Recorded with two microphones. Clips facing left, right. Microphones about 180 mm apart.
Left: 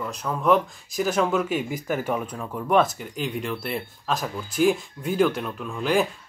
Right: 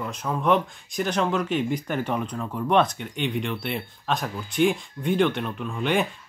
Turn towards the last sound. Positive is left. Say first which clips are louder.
# left 1 dB
turn(degrees=0)  # may be behind; listen again after turning